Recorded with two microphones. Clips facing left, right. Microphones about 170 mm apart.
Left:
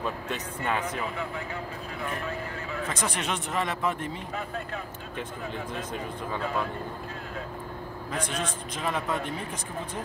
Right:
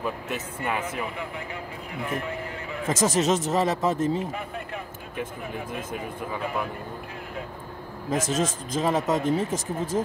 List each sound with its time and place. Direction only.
0.0 s speech: 10° right (ahead or behind)
2.0 s music: 20° right (ahead or behind)
2.9 s a man's voice: 40° right (ahead or behind)
6.3 s speech: 15° right (ahead or behind)
8.1 s a man's voice: 40° right (ahead or behind)
9.9 s a man's voice: 30° right (ahead or behind)